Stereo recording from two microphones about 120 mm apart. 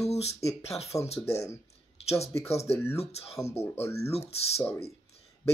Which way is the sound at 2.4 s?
60° left (ahead or behind).